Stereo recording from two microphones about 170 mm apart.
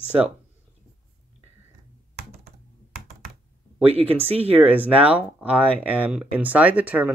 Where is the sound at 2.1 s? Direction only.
70° right (ahead or behind).